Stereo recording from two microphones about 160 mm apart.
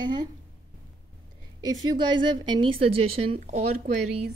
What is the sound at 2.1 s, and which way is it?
A woman's voice, 30° right (ahead or behind).